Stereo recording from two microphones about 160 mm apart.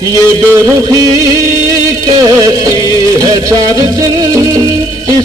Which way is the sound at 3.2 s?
20° right (ahead or behind).